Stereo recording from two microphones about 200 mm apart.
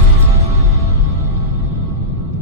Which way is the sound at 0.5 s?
15° right (ahead or behind).